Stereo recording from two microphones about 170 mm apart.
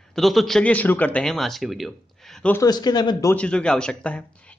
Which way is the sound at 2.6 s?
25° left (ahead or behind).